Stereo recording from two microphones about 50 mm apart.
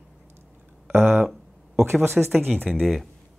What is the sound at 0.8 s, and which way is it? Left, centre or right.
Speech, right.